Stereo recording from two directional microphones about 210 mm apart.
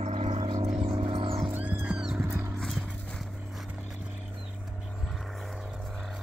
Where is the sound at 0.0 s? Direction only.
30° right (ahead or behind).